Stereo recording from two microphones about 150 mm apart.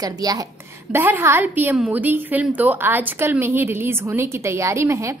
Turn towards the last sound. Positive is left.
turn(degrees=-20)  # may be behind; listen again after turning